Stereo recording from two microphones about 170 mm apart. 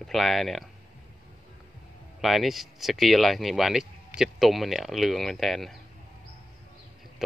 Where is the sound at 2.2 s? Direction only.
Centre (ahead or behind).